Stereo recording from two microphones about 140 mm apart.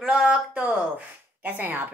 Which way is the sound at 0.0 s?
5° right (ahead or behind).